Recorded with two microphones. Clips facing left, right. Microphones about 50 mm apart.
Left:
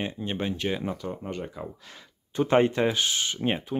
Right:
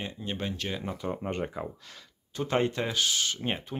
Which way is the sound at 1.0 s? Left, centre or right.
Right.